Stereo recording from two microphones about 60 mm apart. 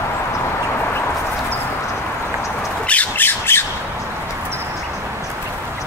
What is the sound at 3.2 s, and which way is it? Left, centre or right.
Squawk, left.